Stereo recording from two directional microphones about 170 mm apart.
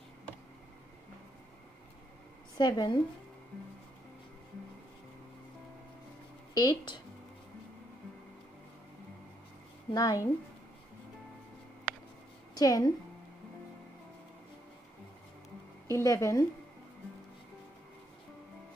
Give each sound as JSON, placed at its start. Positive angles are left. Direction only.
{"t": 2.5, "sound": "a woman's voice", "side_deg": 25}
{"t": 6.5, "sound": "speech", "side_deg": 25}
{"t": 9.9, "sound": "speech", "side_deg": 20}
{"t": 12.5, "sound": "a woman's voice", "side_deg": 20}
{"t": 15.9, "sound": "speech", "side_deg": 15}